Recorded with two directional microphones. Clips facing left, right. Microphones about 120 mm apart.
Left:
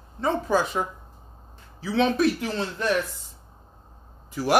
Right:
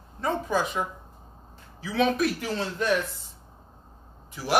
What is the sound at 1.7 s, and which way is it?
Speech, 30° left (ahead or behind).